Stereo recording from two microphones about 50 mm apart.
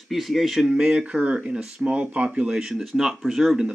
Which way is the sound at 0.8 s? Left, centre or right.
Centre.